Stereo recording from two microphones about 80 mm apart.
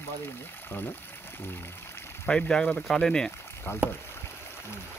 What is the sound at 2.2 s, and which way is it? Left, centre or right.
Speech, centre.